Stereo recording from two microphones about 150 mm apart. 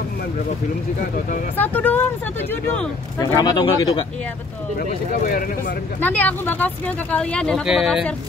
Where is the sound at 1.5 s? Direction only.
10° left (ahead or behind).